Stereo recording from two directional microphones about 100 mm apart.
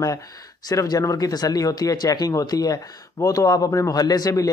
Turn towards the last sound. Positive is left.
turn(degrees=35)  # may be behind; listen again after turning